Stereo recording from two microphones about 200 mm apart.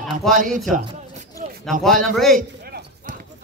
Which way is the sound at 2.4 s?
45° right (ahead or behind).